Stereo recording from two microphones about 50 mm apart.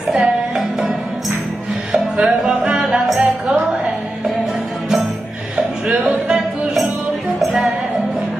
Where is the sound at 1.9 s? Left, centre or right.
Right.